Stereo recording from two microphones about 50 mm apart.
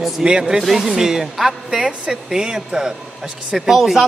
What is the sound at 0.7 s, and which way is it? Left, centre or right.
Speech, centre.